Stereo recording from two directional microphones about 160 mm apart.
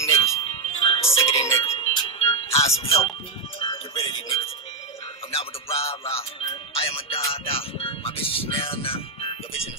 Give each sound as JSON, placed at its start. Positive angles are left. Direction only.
{"t": 0.4, "sound": "music", "side_deg": 35}
{"t": 1.2, "sound": "speech", "side_deg": 40}
{"t": 1.7, "sound": "music", "side_deg": 30}